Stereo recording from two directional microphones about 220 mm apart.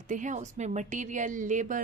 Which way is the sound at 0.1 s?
35° right (ahead or behind).